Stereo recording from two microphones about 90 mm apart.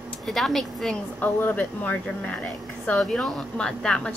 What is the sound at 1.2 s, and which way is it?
Speech, 20° left (ahead or behind).